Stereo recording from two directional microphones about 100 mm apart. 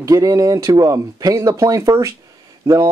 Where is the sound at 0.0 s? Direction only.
35° right (ahead or behind).